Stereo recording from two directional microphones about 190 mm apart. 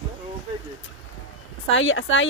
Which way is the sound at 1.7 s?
80° left.